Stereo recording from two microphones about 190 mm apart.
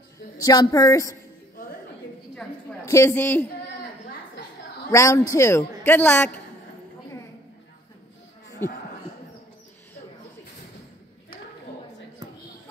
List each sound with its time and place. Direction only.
0.4 s a man's voice: 20° left (ahead or behind)
2.8 s a man's voice: 15° left (ahead or behind)
4.9 s a man's voice: 15° left (ahead or behind)